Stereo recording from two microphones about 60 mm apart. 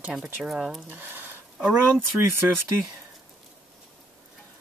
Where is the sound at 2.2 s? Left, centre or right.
Right.